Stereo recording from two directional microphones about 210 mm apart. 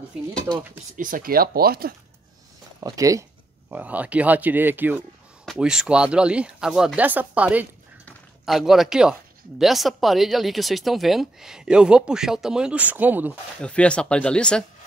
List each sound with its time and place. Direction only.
0.9 s speech: 40° right (ahead or behind)
2.8 s speech: 15° right (ahead or behind)
8.0 s a sound: centre (ahead or behind)
9.6 s speech: centre (ahead or behind)
13.6 s speech: 5° left (ahead or behind)